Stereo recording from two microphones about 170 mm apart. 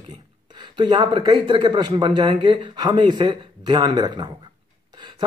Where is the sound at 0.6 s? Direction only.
25° right (ahead or behind).